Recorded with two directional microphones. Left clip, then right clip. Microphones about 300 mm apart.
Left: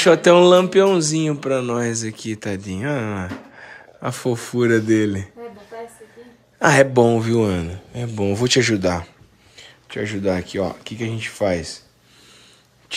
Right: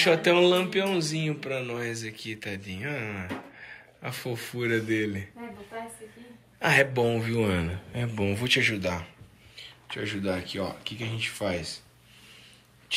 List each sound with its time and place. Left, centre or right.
0.0 s speech: left
6.6 s speech: left